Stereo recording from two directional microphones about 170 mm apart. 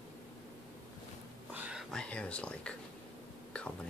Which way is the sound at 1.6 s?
Centre (ahead or behind).